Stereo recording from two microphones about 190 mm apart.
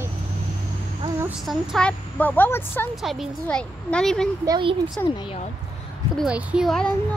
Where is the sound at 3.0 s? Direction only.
Centre (ahead or behind).